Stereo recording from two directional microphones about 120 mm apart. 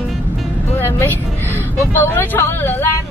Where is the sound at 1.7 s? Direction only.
20° left (ahead or behind).